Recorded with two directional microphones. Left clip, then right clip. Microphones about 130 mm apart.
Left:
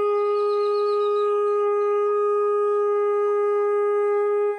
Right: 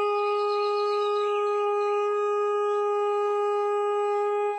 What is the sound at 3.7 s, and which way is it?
Shofar, 20° right (ahead or behind).